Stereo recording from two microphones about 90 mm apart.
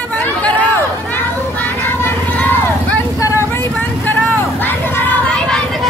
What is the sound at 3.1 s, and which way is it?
Vehicle, 35° left (ahead or behind).